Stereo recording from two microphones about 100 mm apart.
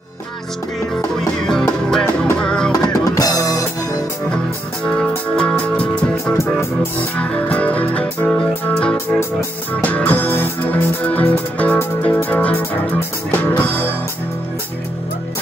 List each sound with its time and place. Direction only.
1.4 s music: 5° left (ahead or behind)
2.7 s drum kit: 35° left (ahead or behind)
4.8 s music: 10° left (ahead or behind)